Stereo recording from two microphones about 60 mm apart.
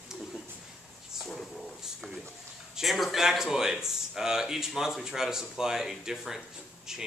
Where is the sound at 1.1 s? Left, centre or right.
Centre.